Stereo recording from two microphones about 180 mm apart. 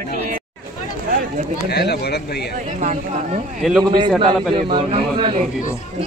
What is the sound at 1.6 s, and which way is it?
Speech, 65° left (ahead or behind).